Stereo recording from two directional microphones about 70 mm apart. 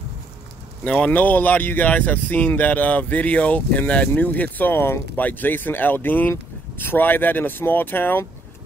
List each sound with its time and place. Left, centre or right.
0.8 s speech: centre